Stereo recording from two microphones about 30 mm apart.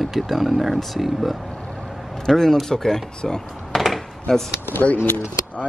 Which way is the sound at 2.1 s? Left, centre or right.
Centre.